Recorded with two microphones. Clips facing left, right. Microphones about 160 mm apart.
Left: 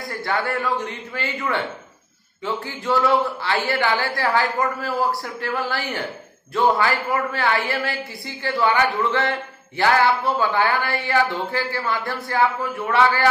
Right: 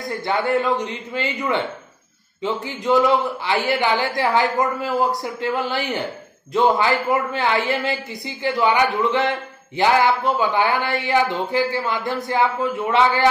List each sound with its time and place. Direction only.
0.0 s a man's voice: 20° right (ahead or behind)